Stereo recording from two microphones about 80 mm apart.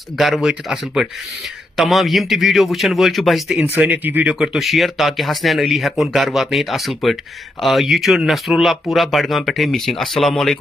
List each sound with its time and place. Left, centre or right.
0.2 s speech: centre
3.7 s speech: right
4.4 s speech: centre